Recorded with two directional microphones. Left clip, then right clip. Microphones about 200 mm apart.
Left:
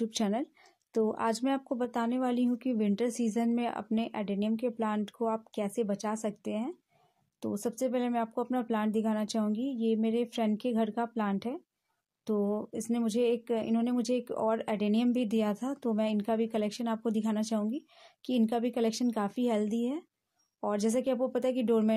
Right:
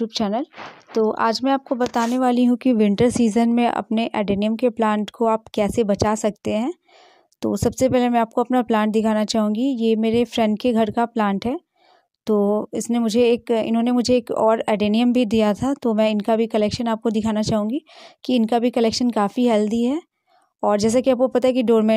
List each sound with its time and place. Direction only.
0.0 s speech: 15° right (ahead or behind)
2.0 s speech: 40° right (ahead or behind)